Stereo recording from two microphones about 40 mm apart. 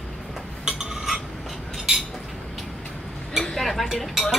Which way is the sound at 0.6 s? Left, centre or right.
Centre.